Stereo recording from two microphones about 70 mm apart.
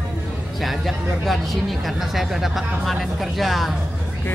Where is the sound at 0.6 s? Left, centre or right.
Centre.